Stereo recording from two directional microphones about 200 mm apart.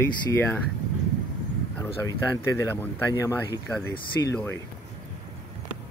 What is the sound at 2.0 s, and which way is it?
Speech, 15° left (ahead or behind).